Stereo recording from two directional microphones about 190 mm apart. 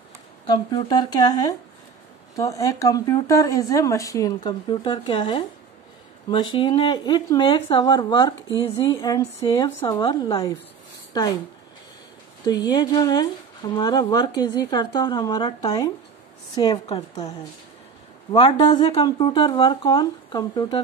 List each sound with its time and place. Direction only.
0.5 s speech: 20° left (ahead or behind)
12.4 s speech: 20° left (ahead or behind)